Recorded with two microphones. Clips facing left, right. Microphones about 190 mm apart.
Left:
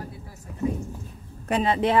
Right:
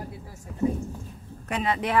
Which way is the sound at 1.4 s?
30° left (ahead or behind).